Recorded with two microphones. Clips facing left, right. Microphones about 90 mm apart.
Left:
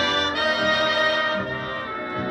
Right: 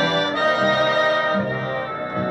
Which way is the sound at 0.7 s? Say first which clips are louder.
Right 4 dB; 30° right (ahead or behind).